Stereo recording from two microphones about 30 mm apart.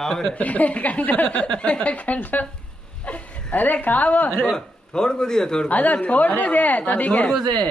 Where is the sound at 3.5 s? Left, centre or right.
Left.